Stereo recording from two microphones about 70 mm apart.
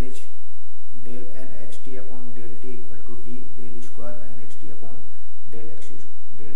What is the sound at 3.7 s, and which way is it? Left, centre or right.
Speech, centre.